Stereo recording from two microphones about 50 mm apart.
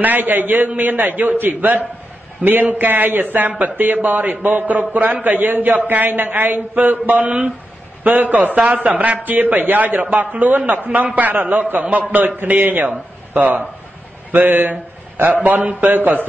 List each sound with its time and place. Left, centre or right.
0.0 s a man's voice: right
9.2 s speech: right